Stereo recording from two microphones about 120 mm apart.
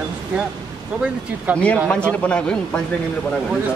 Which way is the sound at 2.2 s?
10° left (ahead or behind).